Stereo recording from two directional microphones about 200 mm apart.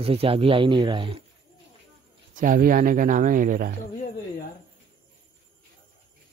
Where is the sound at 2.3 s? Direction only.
45° right (ahead or behind).